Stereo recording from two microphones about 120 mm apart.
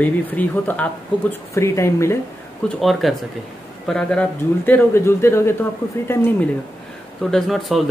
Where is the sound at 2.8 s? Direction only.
Centre (ahead or behind); by 6.5 s 15° left (ahead or behind).